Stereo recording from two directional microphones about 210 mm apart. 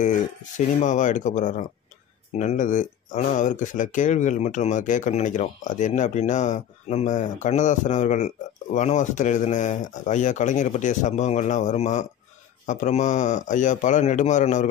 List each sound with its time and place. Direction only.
0.0 s speech: 35° left (ahead or behind)